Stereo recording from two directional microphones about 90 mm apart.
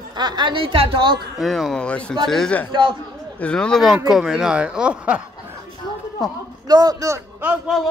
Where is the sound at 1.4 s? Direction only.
Centre (ahead or behind).